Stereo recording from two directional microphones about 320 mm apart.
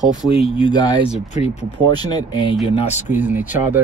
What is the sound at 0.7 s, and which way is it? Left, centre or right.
Speech, centre.